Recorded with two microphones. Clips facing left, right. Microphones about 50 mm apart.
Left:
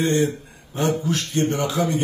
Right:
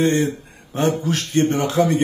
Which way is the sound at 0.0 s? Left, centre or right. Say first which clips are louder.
Right 2 dB; right.